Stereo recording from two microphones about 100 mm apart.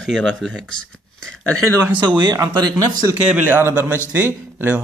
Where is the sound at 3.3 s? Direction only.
20° right (ahead or behind).